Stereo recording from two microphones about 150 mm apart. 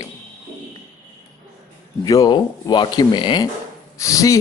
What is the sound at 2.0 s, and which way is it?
A man's voice, 25° left (ahead or behind).